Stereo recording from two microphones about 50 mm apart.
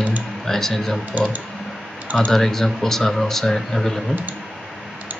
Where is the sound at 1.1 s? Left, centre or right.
Right.